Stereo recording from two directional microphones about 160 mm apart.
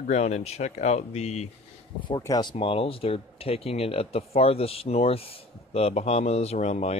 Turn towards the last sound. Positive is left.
turn(degrees=45)  # may be behind; listen again after turning